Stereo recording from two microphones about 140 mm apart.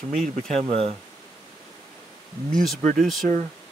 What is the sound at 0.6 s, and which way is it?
Speech, 45° right (ahead or behind).